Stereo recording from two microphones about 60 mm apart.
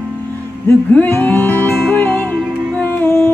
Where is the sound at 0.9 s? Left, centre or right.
Left.